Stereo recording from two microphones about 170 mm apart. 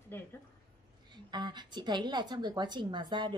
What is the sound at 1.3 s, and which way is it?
Speech, 25° right (ahead or behind).